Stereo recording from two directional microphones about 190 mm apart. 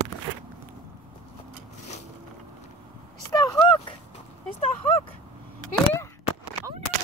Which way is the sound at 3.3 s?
20° left (ahead or behind).